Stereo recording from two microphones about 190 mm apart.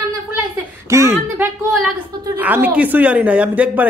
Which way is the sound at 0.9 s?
15° right (ahead or behind).